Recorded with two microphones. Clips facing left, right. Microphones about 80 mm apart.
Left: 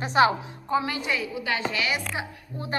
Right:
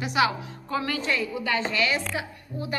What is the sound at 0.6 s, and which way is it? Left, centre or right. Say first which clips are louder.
A woman's voice: left 2 dB; centre.